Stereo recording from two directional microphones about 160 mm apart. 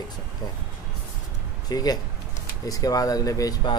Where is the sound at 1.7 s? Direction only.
25° left (ahead or behind).